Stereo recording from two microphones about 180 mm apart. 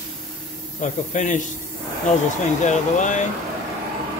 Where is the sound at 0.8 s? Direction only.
45° left (ahead or behind).